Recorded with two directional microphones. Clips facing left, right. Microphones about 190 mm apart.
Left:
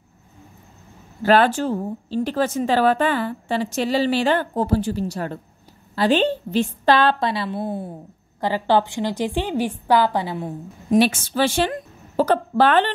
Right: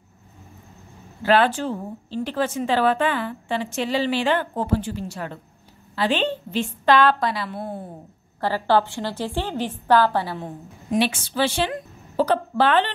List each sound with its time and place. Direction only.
1.2 s speech: 45° left (ahead or behind); by 7.6 s 25° left (ahead or behind)
8.4 s a woman's voice: 15° left (ahead or behind)
10.9 s a woman's voice: 45° left (ahead or behind)